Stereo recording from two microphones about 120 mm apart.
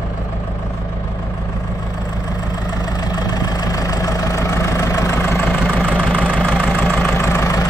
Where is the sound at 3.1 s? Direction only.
35° left (ahead or behind).